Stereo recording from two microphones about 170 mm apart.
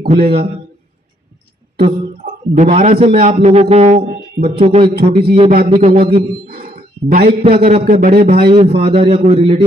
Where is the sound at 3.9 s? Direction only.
60° right (ahead or behind).